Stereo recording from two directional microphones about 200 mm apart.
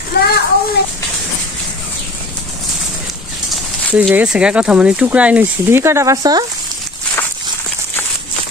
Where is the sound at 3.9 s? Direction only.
5° right (ahead or behind).